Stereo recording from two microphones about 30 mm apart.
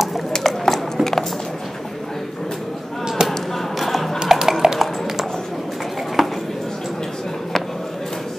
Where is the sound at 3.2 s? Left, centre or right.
Right.